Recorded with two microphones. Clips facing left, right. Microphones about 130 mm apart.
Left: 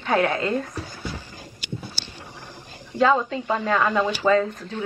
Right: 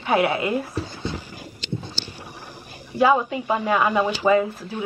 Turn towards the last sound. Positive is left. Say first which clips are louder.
# right 1 dB
turn(degrees=-15)  # may be behind; listen again after turning